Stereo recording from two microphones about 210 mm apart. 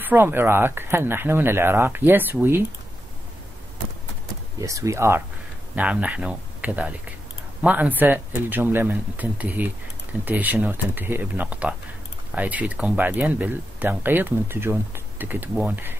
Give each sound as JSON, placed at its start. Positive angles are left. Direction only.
{"t": 0.0, "sound": "speech", "side_deg": -10}
{"t": 4.6, "sound": "speech", "side_deg": -15}